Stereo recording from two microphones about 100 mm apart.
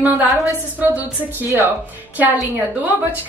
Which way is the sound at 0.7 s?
15° right (ahead or behind).